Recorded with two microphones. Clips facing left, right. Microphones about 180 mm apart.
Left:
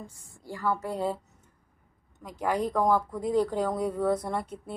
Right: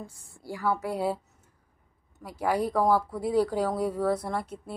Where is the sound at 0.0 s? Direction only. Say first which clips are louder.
Right 2 dB; 10° right (ahead or behind).